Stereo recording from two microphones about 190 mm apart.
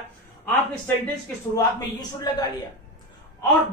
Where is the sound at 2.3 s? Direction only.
20° left (ahead or behind).